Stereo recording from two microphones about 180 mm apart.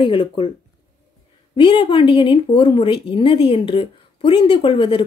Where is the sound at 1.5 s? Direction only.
30° left (ahead or behind).